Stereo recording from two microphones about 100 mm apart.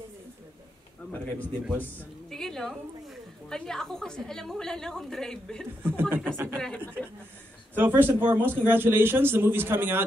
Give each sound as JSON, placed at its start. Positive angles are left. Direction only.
{"t": 2.3, "sound": "a woman's voice", "side_deg": 5}
{"t": 5.8, "sound": "a man's voice", "side_deg": -20}